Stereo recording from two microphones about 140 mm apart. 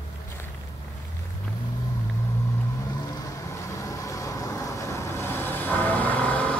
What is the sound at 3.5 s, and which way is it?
Vehicle, 20° left (ahead or behind).